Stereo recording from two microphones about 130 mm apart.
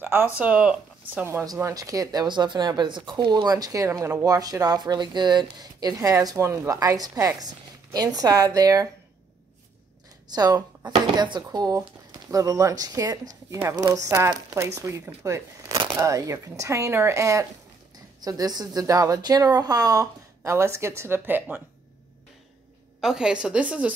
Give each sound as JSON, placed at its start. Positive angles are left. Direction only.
{"t": 0.0, "sound": "speech", "side_deg": -15}
{"t": 10.2, "sound": "speech", "side_deg": -30}
{"t": 15.8, "sound": "a sound", "side_deg": -40}
{"t": 16.1, "sound": "speech", "side_deg": -25}
{"t": 22.9, "sound": "a woman's voice", "side_deg": -5}